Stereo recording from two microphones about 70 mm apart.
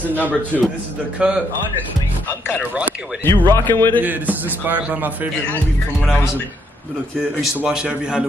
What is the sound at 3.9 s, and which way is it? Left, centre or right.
A man's voice, right.